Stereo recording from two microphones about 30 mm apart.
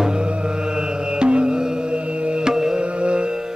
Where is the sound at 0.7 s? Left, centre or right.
Right.